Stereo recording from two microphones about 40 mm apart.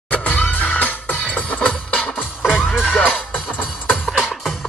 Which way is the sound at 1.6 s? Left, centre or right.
Left.